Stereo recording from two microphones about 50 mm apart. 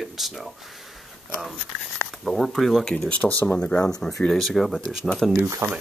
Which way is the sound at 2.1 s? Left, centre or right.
Centre.